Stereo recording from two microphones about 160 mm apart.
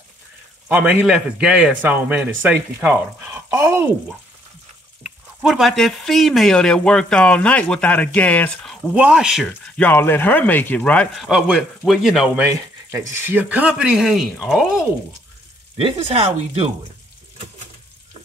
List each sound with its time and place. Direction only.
0.7 s a man's voice: 10° right (ahead or behind)
5.0 s speech: centre (ahead or behind)
8.9 s speech: 5° right (ahead or behind)
9.5 s speech: 10° left (ahead or behind)
11.1 s a man's voice: 5° right (ahead or behind)
15.8 s speech: 40° right (ahead or behind)